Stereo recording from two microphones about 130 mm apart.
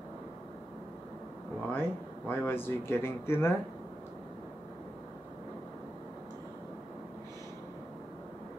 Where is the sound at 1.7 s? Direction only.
15° left (ahead or behind).